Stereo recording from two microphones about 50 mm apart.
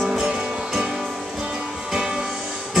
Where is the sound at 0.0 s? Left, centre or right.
Centre.